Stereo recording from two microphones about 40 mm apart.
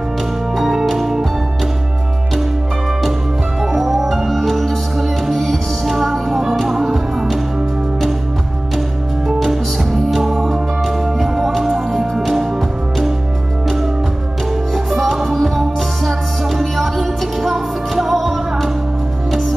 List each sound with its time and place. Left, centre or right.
0.6 s music: centre
3.6 s music: centre
9.4 s music: centre
14.9 s music: centre